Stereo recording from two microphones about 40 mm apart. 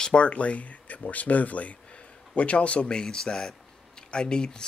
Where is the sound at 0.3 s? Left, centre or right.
Left.